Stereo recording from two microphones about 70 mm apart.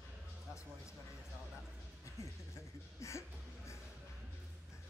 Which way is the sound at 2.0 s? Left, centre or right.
Left.